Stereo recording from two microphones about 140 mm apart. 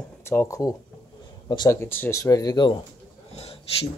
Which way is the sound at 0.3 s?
20° left (ahead or behind).